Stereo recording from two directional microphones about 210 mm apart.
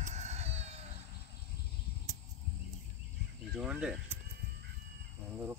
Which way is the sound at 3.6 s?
5° right (ahead or behind).